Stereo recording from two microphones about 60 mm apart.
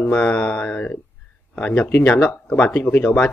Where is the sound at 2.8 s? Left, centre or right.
Left.